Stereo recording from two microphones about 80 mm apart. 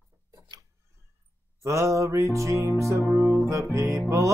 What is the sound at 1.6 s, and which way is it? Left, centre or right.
Music, right.